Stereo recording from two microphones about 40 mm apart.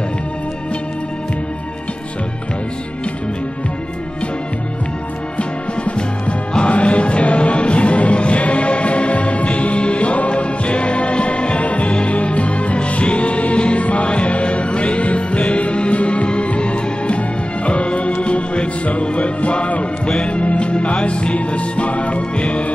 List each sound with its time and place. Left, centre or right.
5.4 s music: left